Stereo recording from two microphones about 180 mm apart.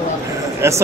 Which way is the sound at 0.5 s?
15° right (ahead or behind).